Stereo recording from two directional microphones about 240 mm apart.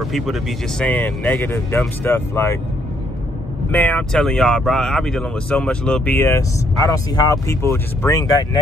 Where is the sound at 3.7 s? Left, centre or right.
Centre.